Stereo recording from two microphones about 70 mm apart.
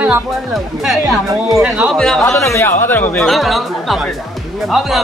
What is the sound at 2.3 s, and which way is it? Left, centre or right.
Speech, left.